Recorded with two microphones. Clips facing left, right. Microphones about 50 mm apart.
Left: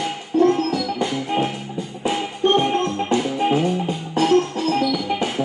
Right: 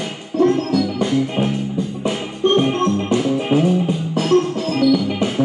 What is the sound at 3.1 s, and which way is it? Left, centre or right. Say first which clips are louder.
Music: even; centre.